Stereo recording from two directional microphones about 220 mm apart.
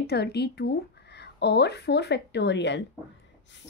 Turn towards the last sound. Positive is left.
turn(degrees=55)  # may be behind; listen again after turning